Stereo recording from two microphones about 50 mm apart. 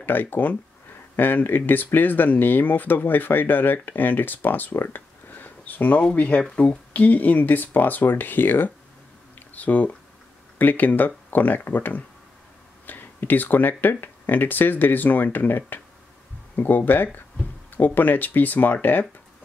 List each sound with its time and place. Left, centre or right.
0.0 s speech: left
4.7 s a sound: left
6.0 s speech: left